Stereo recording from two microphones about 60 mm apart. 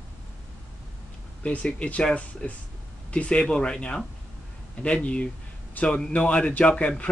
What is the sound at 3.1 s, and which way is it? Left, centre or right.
A man's voice, left.